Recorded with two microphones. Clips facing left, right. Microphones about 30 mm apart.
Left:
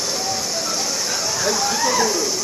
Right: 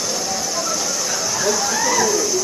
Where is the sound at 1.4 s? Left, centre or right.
Left.